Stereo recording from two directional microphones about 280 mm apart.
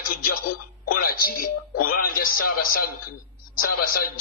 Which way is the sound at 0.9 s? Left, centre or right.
Left.